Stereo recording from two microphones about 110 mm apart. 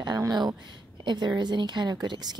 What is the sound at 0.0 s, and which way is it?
Speech, 35° right (ahead or behind).